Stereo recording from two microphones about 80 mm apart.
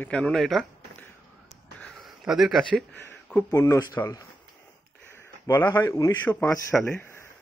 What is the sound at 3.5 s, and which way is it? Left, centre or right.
Speech, left.